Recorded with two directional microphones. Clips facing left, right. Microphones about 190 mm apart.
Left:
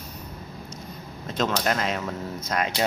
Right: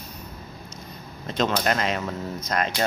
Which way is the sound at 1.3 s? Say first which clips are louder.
Right 1 dB; centre (ahead or behind).